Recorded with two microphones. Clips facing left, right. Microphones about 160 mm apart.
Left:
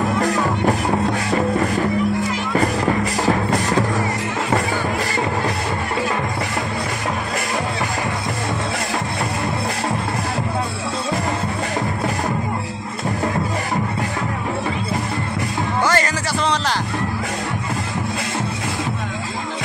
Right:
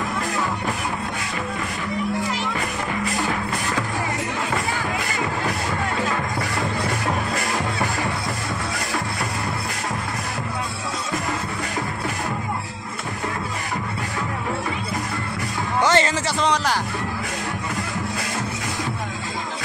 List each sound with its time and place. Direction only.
15.8 s music: 20° right (ahead or behind)